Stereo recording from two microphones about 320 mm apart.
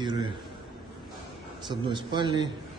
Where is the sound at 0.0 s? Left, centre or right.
Centre.